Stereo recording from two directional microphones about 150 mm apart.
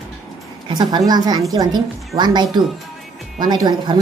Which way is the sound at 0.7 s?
30° right (ahead or behind).